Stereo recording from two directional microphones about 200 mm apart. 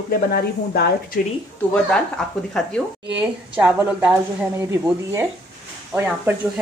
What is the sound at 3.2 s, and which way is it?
Speech, 10° right (ahead or behind).